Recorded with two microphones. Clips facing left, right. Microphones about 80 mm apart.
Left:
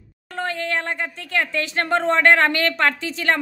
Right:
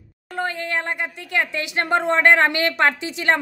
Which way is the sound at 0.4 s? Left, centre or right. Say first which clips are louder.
Even; centre.